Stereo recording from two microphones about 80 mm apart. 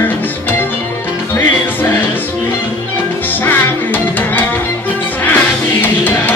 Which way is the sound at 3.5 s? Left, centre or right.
Left.